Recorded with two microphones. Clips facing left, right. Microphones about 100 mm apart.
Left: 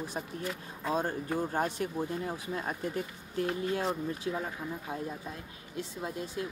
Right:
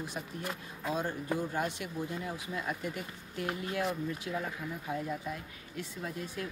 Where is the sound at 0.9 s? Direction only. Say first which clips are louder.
Left 2 dB; 40° left (ahead or behind).